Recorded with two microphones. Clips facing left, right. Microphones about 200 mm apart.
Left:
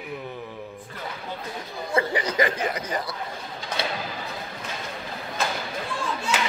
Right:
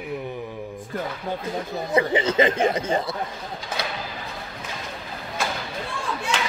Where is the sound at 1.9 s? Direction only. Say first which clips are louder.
Right 4 dB; 25° right (ahead or behind).